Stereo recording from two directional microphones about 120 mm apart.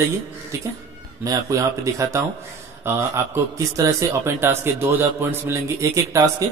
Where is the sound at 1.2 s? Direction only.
25° right (ahead or behind).